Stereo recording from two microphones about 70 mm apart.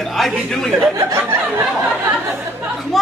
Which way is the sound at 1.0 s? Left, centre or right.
Right.